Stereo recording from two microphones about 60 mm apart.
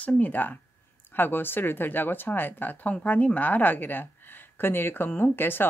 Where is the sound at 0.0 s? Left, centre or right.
Left.